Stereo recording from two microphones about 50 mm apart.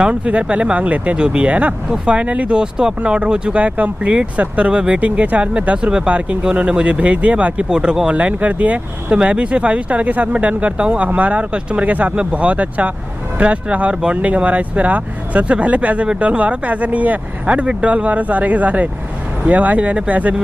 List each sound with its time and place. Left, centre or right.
0.0 s speech: right
7.7 s speech: centre
8.2 s speech: right